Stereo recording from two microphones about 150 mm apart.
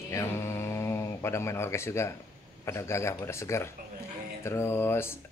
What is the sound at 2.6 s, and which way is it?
Speech, 20° left (ahead or behind).